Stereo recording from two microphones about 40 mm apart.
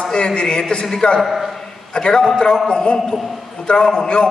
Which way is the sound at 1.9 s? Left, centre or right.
Centre.